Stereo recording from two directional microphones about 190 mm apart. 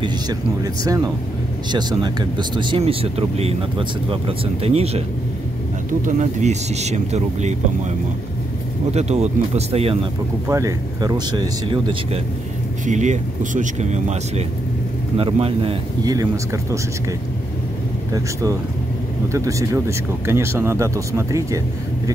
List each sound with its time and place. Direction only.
0.8 s speech: 15° right (ahead or behind)
6.0 s speech: 40° right (ahead or behind)
8.9 s speech: 35° right (ahead or behind)
10.5 s speech: 15° right (ahead or behind)
12.8 s speech: 40° right (ahead or behind); by 16.3 s 20° right (ahead or behind)
18.1 s speech: 15° right (ahead or behind)